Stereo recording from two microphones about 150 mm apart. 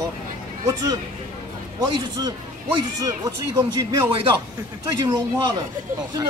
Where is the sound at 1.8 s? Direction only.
30° right (ahead or behind).